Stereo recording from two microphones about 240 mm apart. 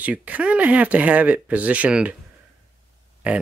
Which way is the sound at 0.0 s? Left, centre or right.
Centre.